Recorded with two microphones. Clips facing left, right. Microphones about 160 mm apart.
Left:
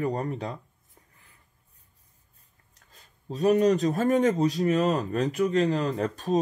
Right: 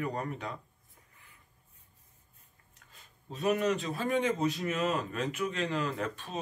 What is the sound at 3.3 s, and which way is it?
A man's voice, 35° left (ahead or behind).